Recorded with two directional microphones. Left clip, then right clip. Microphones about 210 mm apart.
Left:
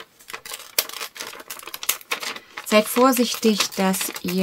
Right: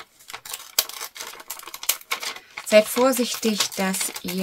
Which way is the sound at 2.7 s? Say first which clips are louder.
Even; 45° left (ahead or behind).